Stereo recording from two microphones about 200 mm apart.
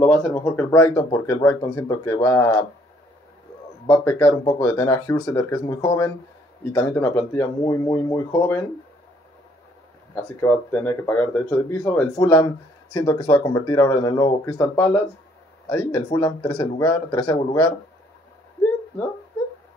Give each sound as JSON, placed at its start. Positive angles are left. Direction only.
{"t": 0.0, "sound": "speech", "side_deg": 10}
{"t": 3.8, "sound": "speech", "side_deg": 15}
{"t": 10.1, "sound": "speech", "side_deg": 15}